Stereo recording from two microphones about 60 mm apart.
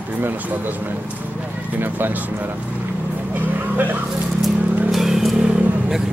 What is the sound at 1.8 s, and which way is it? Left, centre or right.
Speech, right.